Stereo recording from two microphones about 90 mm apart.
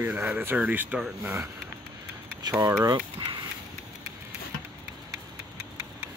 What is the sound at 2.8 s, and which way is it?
Speech, 45° right (ahead or behind).